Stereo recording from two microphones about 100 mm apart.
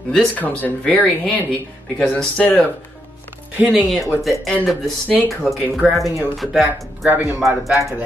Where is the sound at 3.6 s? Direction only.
15° right (ahead or behind).